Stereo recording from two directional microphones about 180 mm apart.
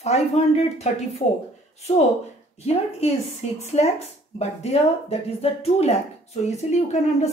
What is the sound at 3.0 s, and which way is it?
A woman's voice, 35° left (ahead or behind).